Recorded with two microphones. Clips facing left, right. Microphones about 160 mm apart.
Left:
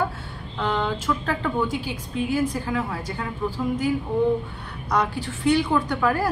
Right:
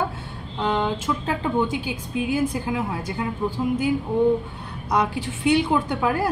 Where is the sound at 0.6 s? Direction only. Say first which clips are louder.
Right 2 dB; 25° right (ahead or behind).